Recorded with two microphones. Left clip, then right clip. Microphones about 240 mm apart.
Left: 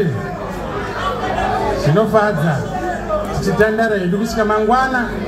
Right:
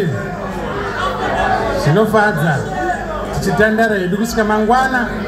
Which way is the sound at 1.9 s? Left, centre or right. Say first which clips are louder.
Right 1 dB; right.